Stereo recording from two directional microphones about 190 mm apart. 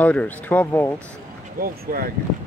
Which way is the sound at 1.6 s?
50° right (ahead or behind).